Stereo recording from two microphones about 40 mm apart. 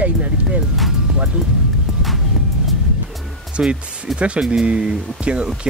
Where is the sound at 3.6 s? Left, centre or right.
Right.